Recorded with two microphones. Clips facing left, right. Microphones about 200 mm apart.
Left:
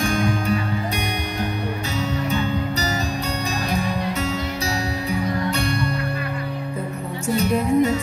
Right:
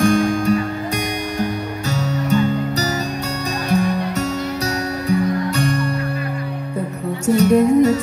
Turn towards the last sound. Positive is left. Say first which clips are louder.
# right 6 dB
turn(degrees=-40)  # may be behind; listen again after turning